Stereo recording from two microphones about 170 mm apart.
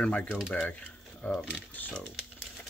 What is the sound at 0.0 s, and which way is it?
Speech, 10° left (ahead or behind).